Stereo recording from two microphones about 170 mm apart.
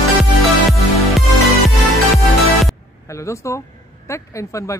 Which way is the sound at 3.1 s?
15° left (ahead or behind).